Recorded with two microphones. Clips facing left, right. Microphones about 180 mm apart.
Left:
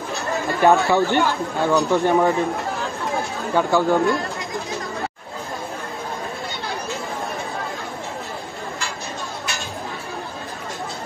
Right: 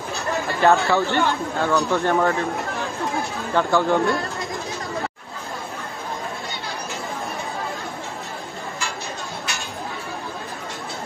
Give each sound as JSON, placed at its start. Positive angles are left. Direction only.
{"t": 0.6, "sound": "a man's voice", "side_deg": 15}
{"t": 3.5, "sound": "a man's voice", "side_deg": 10}